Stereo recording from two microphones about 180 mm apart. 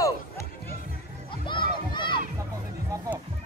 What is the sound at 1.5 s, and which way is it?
Children playing, 25° left (ahead or behind).